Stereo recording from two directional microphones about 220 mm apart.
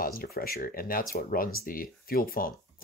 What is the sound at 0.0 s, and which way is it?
Speech, 40° left (ahead or behind).